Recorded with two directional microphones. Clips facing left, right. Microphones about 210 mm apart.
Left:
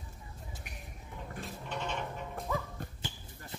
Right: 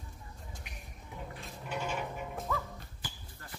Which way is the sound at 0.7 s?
50° left (ahead or behind).